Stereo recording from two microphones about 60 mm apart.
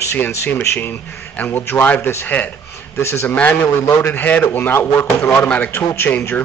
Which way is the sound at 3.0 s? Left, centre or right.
Left.